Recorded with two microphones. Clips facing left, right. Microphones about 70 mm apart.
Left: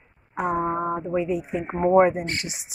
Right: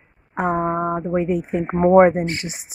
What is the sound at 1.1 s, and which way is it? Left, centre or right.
A woman's voice, right.